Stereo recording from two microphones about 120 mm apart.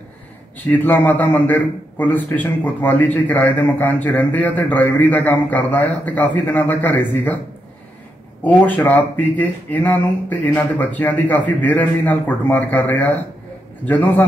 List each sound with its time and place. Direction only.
0.7 s a man's voice: 15° left (ahead or behind)
8.5 s a man's voice: 15° left (ahead or behind)